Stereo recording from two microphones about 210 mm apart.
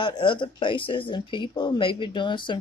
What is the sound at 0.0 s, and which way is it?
Speech, 25° left (ahead or behind).